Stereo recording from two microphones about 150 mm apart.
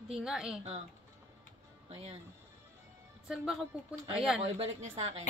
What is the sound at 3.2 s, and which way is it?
Speech, 5° right (ahead or behind).